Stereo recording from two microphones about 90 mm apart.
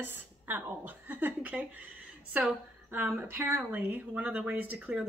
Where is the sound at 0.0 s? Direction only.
20° right (ahead or behind).